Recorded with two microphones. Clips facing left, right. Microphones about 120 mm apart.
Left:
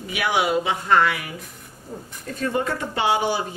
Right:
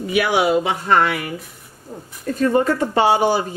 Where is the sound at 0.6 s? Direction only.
50° right (ahead or behind).